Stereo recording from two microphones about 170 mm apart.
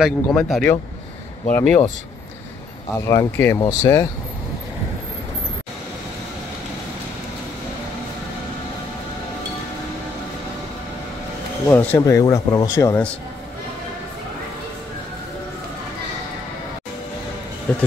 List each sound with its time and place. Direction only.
0.0 s speech: centre (ahead or behind)
2.9 s speech: 15° left (ahead or behind)
11.6 s speech: 15° left (ahead or behind)